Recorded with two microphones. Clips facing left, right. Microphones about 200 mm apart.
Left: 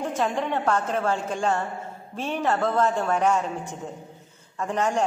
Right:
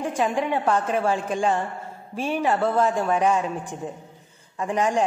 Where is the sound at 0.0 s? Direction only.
10° right (ahead or behind).